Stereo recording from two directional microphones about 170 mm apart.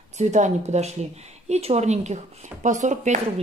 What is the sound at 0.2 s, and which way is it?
Speech, 45° right (ahead or behind).